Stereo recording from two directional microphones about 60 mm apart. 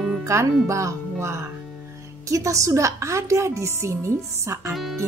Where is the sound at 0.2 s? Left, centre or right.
Right.